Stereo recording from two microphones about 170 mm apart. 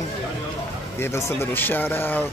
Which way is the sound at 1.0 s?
15° left (ahead or behind).